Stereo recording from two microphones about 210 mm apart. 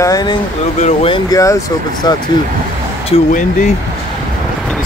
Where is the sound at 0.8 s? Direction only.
30° left (ahead or behind).